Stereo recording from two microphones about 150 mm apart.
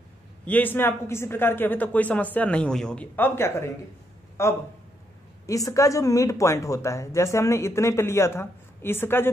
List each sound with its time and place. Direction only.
0.5 s speech: 10° left (ahead or behind)